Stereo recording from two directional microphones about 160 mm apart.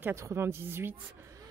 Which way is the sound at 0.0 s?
20° right (ahead or behind).